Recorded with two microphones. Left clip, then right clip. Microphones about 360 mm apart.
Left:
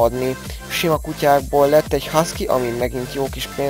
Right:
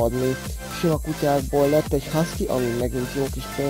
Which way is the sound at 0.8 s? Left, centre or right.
Left.